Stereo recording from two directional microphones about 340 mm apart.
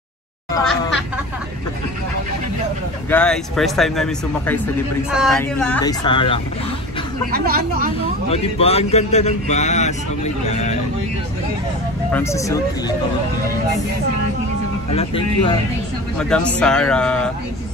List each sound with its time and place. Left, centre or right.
0.5 s speech: centre
3.1 s speech: centre
7.2 s speech: right
8.3 s a man's voice: centre
12.1 s speech: centre
14.9 s speech: centre
16.2 s speech: centre